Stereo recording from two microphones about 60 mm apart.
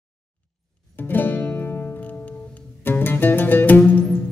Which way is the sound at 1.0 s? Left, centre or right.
Left.